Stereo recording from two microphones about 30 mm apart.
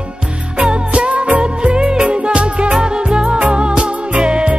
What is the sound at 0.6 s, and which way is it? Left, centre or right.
Music, right.